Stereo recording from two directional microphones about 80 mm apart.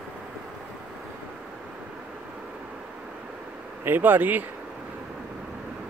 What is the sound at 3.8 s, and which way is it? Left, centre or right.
Speech, right.